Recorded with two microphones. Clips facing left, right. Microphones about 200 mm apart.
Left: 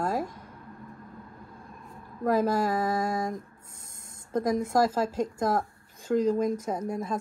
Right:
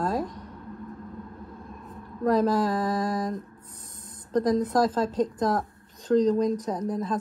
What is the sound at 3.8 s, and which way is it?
Spray, 25° left (ahead or behind).